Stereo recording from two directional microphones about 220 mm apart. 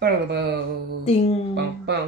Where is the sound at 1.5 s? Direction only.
50° right (ahead or behind).